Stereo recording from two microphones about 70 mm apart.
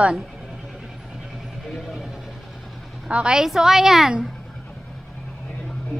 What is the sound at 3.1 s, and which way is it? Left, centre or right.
A woman's voice, centre.